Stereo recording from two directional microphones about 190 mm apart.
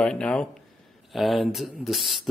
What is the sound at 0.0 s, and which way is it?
Speech, 5° left (ahead or behind).